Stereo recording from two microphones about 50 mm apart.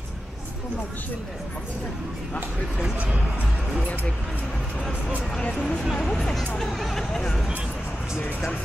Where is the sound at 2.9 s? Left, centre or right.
Right.